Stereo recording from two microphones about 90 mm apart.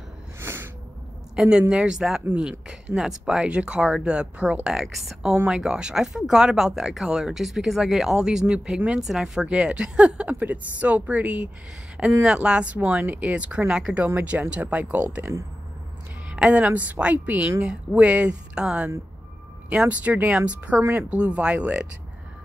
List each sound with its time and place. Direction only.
0.4 s a sound: 25° right (ahead or behind)
1.3 s speech: 10° right (ahead or behind)
5.3 s speech: 15° right (ahead or behind)
16.3 s speech: 15° right (ahead or behind)